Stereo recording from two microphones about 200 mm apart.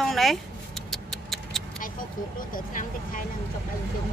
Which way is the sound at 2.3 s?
45° left (ahead or behind).